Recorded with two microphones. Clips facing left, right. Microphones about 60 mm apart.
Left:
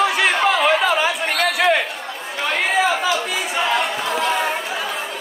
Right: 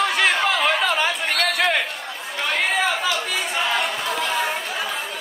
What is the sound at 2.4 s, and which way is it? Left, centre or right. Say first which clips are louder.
Chatter: left 3 dB; centre.